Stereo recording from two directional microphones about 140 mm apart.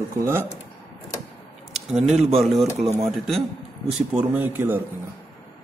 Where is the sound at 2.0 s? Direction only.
50° right (ahead or behind).